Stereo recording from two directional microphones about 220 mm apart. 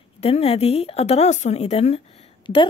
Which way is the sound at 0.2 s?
25° left (ahead or behind).